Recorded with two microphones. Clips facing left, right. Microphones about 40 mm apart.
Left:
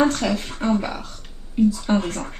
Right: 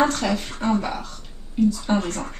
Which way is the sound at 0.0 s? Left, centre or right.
Centre.